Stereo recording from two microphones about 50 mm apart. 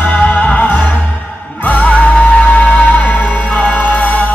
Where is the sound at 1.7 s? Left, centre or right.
Left.